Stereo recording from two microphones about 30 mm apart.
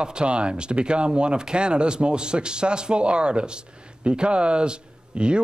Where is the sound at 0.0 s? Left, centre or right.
Right.